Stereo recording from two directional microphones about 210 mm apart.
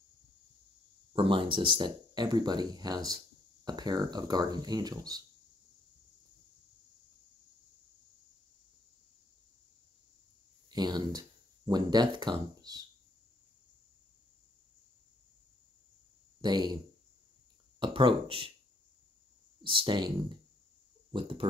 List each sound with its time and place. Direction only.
1.1 s speech: 25° right (ahead or behind)
10.7 s speech: 20° right (ahead or behind)
16.3 s speech: 20° right (ahead or behind)
17.7 s speech: 25° right (ahead or behind)
19.6 s speech: 25° right (ahead or behind)
21.1 s a sound: 25° right (ahead or behind)